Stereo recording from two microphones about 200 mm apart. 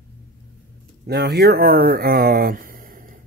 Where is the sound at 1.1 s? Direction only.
55° right (ahead or behind).